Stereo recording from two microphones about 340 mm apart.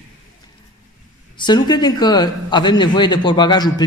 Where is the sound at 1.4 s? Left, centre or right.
Centre.